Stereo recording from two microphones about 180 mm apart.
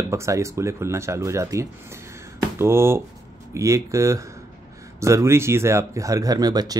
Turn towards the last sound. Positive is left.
turn(degrees=-20)  # may be behind; listen again after turning